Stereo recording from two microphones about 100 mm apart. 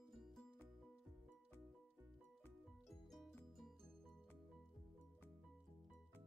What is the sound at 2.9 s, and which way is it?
Music, centre (ahead or behind).